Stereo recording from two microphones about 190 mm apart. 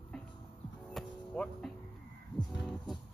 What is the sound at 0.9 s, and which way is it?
Music, 5° left (ahead or behind).